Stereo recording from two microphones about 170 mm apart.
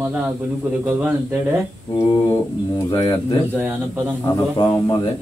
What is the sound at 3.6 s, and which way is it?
Speech, 10° right (ahead or behind).